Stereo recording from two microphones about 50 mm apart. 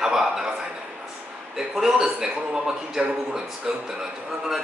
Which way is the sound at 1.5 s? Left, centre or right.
Centre.